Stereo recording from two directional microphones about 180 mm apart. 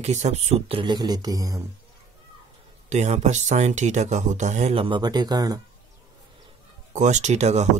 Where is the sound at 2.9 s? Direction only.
40° right (ahead or behind); by 5.6 s 20° right (ahead or behind).